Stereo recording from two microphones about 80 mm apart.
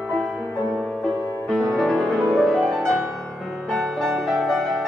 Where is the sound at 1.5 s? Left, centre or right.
Centre.